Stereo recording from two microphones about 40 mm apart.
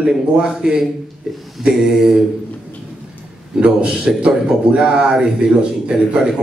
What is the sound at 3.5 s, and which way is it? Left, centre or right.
A man's voice, right.